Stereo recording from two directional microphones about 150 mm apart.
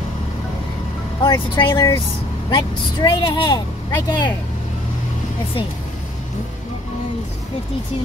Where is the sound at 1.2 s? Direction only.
30° left (ahead or behind).